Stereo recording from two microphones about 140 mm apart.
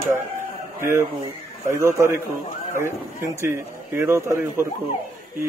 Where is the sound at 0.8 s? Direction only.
20° right (ahead or behind).